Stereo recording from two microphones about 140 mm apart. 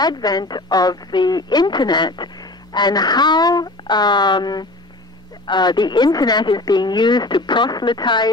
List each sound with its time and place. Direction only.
0.0 s a woman's voice: 30° left (ahead or behind)